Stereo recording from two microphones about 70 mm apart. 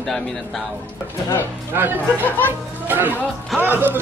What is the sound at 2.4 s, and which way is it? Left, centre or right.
Speech, right.